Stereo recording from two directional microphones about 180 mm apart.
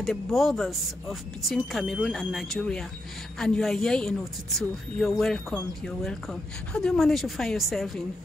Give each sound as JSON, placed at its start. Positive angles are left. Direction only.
{"t": 0.0, "sound": "speech", "side_deg": 0}